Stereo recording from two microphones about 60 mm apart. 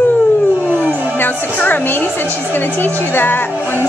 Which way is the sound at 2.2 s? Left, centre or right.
Right.